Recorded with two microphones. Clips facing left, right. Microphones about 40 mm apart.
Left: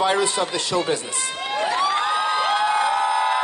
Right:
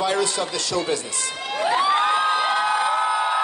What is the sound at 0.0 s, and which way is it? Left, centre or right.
A man's voice, left.